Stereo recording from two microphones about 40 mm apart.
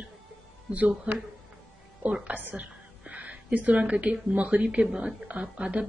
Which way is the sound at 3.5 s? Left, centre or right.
Right.